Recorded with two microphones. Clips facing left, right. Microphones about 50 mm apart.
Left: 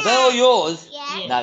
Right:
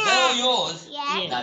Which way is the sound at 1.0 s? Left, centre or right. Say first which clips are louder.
Right 3 dB; centre.